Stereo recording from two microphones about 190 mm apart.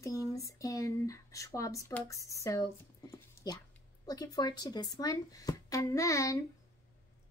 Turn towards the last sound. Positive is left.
turn(degrees=15)  # may be behind; listen again after turning